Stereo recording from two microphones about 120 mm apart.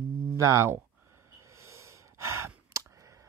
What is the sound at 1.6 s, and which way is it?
Sigh, 25° right (ahead or behind).